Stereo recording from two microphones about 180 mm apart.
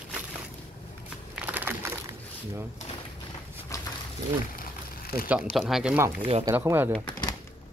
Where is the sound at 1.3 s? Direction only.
10° right (ahead or behind).